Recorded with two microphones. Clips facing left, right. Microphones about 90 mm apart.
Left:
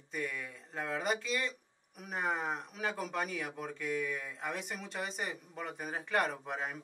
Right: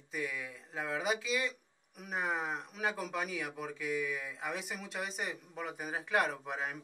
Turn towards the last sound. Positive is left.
turn(degrees=0)  # may be behind; listen again after turning